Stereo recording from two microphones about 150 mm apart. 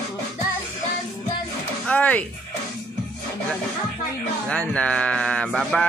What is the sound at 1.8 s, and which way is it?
Music, 10° left (ahead or behind).